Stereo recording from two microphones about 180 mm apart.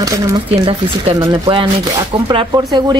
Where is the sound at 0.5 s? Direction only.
35° right (ahead or behind).